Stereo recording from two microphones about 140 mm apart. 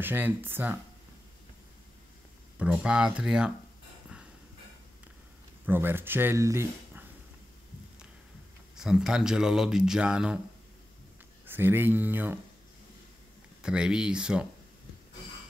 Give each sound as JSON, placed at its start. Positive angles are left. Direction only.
{"t": 0.0, "sound": "speech", "side_deg": -15}
{"t": 2.6, "sound": "speech", "side_deg": -5}
{"t": 5.7, "sound": "speech", "side_deg": -15}
{"t": 8.7, "sound": "speech", "side_deg": -5}
{"t": 11.4, "sound": "speech", "side_deg": -15}
{"t": 13.6, "sound": "speech", "side_deg": -5}